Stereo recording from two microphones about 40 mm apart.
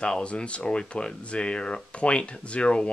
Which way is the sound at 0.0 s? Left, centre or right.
Left.